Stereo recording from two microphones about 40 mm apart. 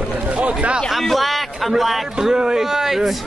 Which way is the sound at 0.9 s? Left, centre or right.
Centre.